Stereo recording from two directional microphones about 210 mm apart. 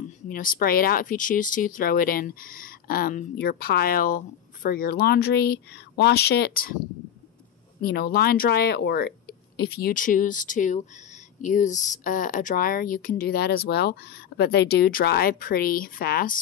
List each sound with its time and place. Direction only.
0.0 s speech: 40° left (ahead or behind)
7.8 s speech: 45° left (ahead or behind)